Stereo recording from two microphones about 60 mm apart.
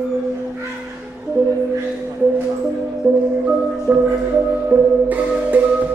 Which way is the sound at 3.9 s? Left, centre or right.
Right.